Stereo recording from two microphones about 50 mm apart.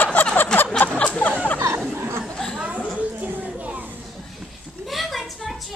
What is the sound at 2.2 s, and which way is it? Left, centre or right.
Chatter, centre.